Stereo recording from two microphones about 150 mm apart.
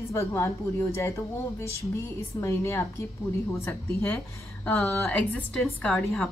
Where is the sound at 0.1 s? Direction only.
20° left (ahead or behind).